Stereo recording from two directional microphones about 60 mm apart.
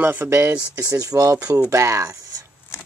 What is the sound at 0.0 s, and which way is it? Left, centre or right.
Speech, right.